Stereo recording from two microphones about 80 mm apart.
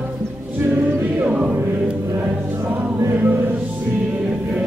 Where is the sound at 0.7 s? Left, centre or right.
Centre.